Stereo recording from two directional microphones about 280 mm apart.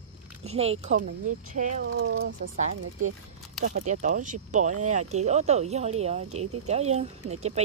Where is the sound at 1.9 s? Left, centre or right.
Right.